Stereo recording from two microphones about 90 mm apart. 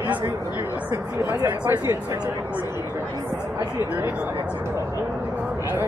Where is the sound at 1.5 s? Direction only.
25° right (ahead or behind).